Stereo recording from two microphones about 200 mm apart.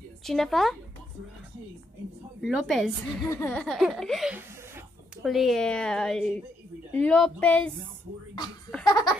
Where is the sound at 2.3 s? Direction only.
Centre (ahead or behind).